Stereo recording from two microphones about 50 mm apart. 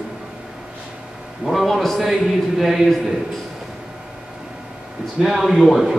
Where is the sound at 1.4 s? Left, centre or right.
Centre.